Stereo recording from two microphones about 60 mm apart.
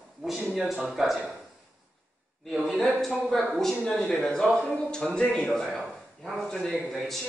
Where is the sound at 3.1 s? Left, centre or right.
Left.